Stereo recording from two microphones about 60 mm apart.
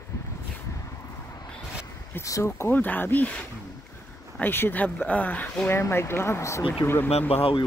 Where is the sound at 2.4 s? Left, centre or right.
Left.